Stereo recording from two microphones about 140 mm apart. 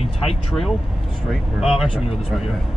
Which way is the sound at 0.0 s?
45° left (ahead or behind).